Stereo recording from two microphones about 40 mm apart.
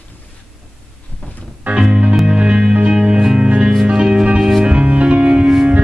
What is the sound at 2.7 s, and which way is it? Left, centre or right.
Music, right.